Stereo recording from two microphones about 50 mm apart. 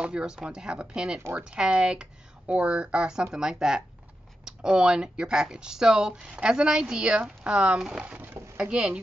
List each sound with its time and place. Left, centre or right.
0.0 s speech: centre